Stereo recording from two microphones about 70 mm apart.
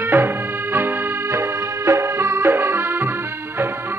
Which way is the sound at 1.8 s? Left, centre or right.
Right.